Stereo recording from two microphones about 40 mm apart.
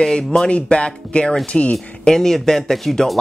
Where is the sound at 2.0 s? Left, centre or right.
Centre.